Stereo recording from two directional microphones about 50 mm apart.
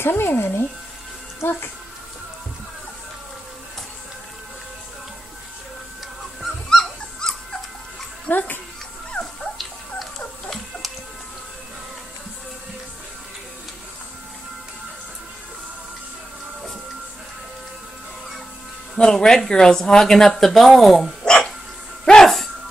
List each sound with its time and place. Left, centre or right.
0.0 s speech: left
1.4 s speech: left
6.4 s dog: centre
8.3 s a child's voice: left
18.9 s speech: centre
21.2 s dog: centre
22.0 s music: centre